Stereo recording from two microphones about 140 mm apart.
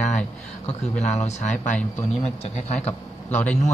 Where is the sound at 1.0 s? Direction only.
50° left (ahead or behind).